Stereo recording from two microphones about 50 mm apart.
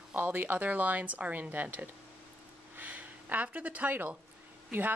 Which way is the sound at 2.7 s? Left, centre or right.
Right.